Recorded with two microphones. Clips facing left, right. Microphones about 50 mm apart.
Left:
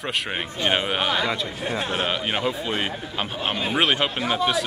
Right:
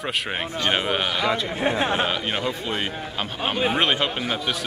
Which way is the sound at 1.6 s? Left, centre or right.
Right.